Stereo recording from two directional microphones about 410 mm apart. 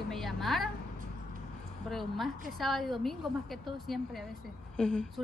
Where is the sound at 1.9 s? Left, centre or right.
Centre.